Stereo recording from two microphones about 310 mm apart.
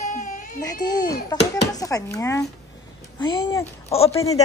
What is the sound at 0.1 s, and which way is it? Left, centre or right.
Baby cry, left.